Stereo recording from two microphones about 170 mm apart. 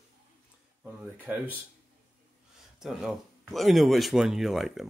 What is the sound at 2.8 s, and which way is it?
Speech, centre (ahead or behind).